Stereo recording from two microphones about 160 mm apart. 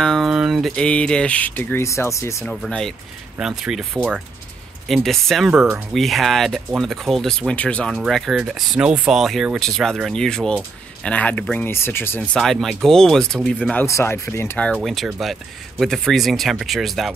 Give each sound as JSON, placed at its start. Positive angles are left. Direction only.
{"t": 0.0, "sound": "speech", "side_deg": 0}
{"t": 2.4, "sound": "speech", "side_deg": 5}
{"t": 12.4, "sound": "speech", "side_deg": 0}
{"t": 13.8, "sound": "speech", "side_deg": 15}
{"t": 14.8, "sound": "speech", "side_deg": 0}